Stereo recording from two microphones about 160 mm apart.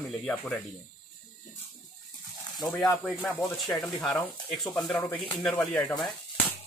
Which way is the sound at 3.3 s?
10° left (ahead or behind).